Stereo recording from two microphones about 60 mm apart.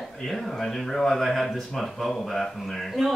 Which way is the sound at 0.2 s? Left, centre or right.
Centre.